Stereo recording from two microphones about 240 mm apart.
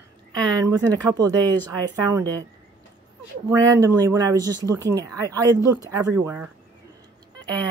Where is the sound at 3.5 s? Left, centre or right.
Centre.